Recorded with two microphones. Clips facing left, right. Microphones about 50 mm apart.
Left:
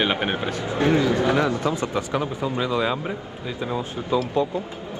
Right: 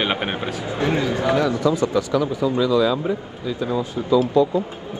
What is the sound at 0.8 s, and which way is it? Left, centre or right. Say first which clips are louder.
Speech: left 1 dB; right.